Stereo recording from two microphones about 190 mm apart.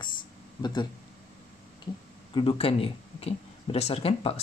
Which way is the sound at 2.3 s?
30° left (ahead or behind).